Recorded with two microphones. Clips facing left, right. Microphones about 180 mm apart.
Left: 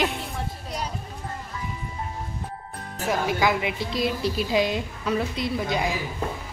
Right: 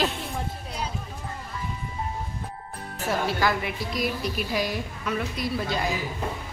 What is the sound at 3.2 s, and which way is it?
A woman's voice, 15° left (ahead or behind).